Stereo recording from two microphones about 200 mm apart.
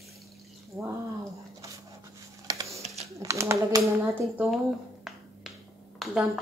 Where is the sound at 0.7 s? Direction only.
5° right (ahead or behind).